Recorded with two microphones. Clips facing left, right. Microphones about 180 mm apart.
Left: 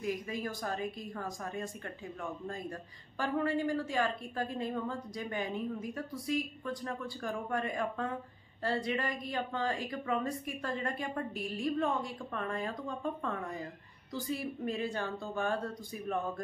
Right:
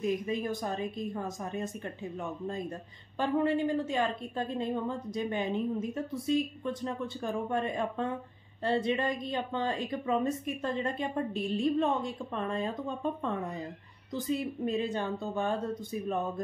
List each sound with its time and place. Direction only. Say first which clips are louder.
0.0 s a woman's voice: right 5 dB; 20° right (ahead or behind)